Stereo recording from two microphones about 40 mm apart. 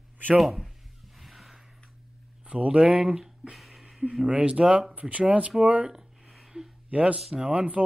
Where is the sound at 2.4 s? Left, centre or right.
Right.